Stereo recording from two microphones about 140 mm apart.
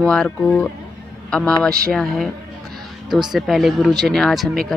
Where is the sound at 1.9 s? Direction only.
Centre (ahead or behind).